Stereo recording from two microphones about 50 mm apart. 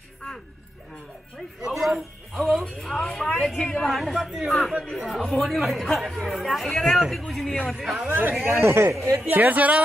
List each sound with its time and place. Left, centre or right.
1.6 s a man's voice: centre
7.6 s speech: centre
8.1 s speech: right
9.3 s speech: right